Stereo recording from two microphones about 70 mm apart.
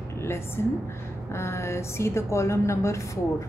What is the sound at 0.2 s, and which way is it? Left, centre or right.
A woman's voice, left.